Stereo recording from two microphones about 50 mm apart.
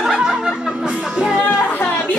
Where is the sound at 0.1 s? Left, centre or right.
Centre.